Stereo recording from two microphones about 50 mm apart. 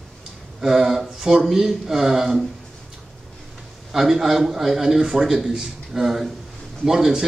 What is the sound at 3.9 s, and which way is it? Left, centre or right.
A man's voice, centre.